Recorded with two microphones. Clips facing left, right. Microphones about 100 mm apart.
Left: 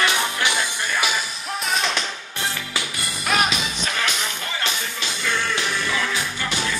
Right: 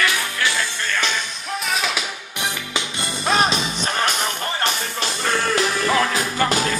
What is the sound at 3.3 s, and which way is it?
Music, 35° right (ahead or behind).